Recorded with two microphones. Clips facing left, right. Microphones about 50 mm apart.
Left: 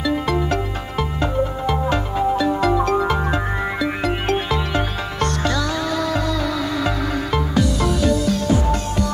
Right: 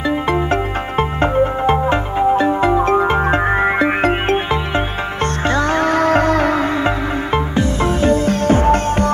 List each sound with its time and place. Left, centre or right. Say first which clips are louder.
0.1 s music: right 4 dB; right
4.5 s music: right 3 dB; right
7.3 s music: right 2 dB; right